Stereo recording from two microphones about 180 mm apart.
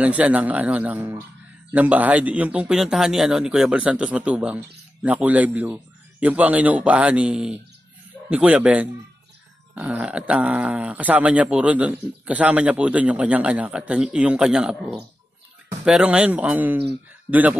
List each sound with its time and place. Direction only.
0.0 s speech: 5° right (ahead or behind)